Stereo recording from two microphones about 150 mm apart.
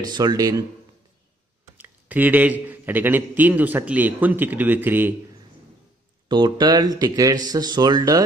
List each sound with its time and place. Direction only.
0.0 s speech: 25° right (ahead or behind)
1.8 s speech: 10° right (ahead or behind)
6.2 s speech: 30° right (ahead or behind)